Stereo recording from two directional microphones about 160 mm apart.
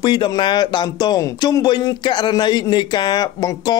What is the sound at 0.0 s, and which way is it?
Speech, 30° left (ahead or behind).